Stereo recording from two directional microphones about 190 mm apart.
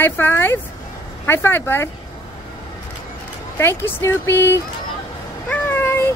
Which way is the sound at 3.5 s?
10° left (ahead or behind).